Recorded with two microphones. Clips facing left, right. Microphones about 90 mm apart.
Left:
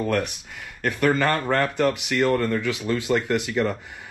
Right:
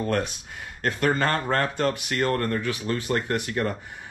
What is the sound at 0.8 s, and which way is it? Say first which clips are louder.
Speech: left 2 dB; 20° right (ahead or behind).